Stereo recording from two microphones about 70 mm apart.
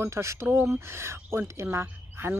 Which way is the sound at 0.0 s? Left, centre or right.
Right.